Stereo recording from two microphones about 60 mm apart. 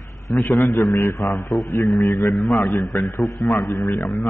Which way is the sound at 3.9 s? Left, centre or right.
Left.